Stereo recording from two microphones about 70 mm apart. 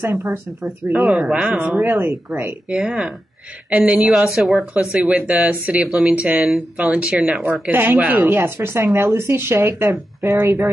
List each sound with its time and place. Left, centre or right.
0.0 s speech: right
1.1 s speech: centre
1.4 s a woman's voice: centre
1.8 s speech: right
2.7 s a woman's voice: centre
7.7 s a woman's voice: right